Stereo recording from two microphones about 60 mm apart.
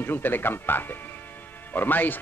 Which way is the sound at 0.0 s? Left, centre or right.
Left.